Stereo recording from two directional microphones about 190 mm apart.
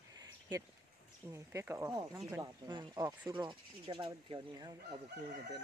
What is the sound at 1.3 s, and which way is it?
Speech, 15° right (ahead or behind).